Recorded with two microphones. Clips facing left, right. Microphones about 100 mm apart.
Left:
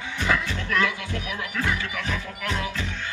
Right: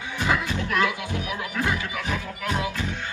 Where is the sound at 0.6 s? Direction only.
20° right (ahead or behind).